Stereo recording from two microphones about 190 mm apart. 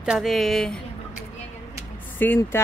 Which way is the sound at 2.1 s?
10° left (ahead or behind).